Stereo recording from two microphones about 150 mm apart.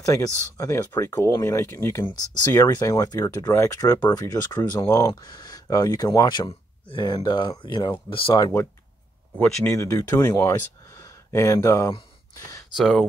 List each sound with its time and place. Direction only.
0.0 s speech: 20° left (ahead or behind)
9.7 s speech: 20° left (ahead or behind)
12.7 s speech: centre (ahead or behind)